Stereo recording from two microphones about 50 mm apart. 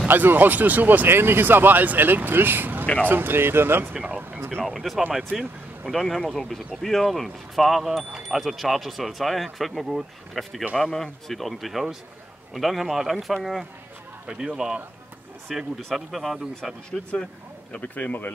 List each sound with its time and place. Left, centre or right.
0.1 s speech: right
1.0 s speech: right
3.9 s speech: right
4.6 s speech: centre
5.3 s speech: centre
5.9 s speech: centre
14.2 s speech: centre
15.5 s speech: centre
16.9 s speech: centre
17.7 s speech: left